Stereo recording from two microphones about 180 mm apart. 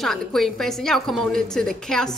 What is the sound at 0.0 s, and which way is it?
A woman's voice, centre (ahead or behind).